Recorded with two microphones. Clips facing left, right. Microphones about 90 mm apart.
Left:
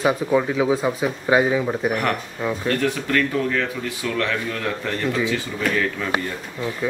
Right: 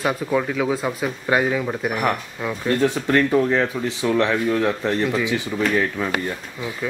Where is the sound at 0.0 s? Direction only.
5° left (ahead or behind).